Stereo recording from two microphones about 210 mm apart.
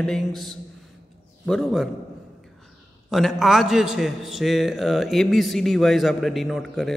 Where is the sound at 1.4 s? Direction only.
Centre (ahead or behind).